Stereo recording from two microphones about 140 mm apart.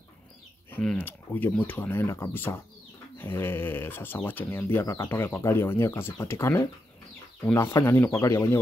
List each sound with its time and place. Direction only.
0.8 s speech: 10° left (ahead or behind)